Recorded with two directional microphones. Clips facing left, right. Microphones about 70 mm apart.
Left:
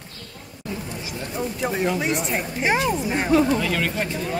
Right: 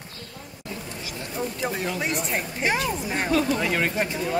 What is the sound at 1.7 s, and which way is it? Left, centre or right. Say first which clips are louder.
Speech: left 5 dB; centre.